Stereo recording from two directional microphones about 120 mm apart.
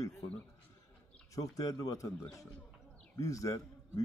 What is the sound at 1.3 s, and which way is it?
A man's voice, 30° left (ahead or behind).